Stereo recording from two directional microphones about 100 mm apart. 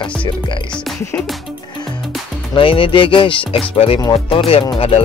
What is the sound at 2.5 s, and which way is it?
Speech, 65° left (ahead or behind).